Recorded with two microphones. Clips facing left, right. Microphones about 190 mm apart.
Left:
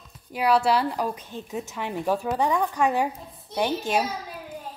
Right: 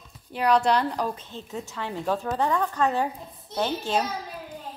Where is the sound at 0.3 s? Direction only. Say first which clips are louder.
Even; 10° left (ahead or behind).